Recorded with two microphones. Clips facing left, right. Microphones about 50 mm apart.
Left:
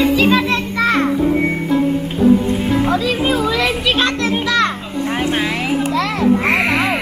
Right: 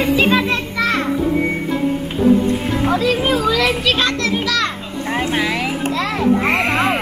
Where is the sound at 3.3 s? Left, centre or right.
Centre.